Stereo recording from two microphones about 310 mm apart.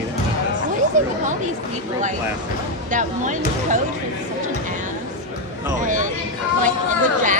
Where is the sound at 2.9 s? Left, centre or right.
Right.